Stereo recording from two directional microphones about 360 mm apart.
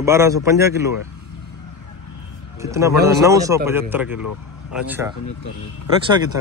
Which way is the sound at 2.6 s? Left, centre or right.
Centre.